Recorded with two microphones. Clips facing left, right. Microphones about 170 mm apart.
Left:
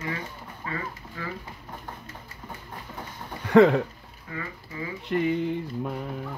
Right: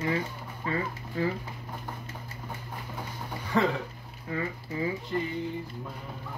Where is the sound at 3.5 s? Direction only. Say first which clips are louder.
Left 10 dB; 70° left (ahead or behind).